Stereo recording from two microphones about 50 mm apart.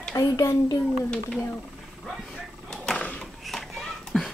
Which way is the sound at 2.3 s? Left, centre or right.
Centre.